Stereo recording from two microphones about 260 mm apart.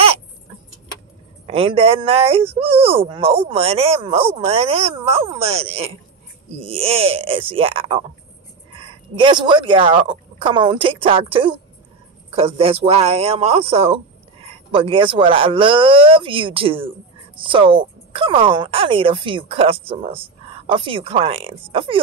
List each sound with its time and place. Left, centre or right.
1.5 s speech: right